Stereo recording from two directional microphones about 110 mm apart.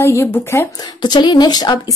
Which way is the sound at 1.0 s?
40° left (ahead or behind).